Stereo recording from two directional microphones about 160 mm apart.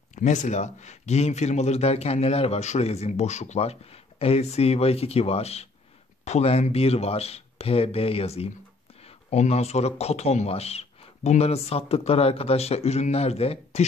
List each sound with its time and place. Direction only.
0.1 s a man's voice: 50° left (ahead or behind)